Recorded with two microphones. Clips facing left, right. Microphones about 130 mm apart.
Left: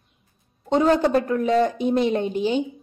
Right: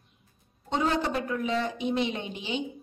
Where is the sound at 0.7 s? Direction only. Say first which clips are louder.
Left 9 dB; 40° left (ahead or behind).